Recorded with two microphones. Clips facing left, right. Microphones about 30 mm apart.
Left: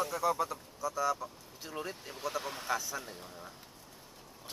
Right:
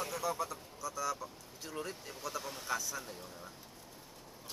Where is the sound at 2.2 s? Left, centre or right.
Left.